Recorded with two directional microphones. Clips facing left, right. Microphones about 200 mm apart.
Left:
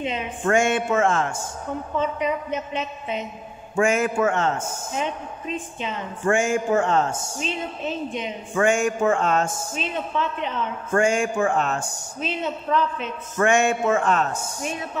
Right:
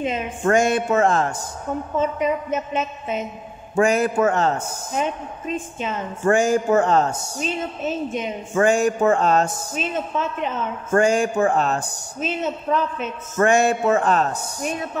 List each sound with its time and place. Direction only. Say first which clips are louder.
0.0 s a man's voice: right 3 dB; 40° right (ahead or behind)